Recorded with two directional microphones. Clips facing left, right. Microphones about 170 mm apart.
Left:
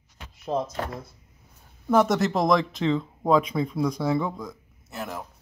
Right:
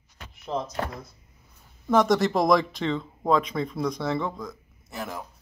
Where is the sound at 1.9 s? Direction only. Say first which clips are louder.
Even; 5° left (ahead or behind).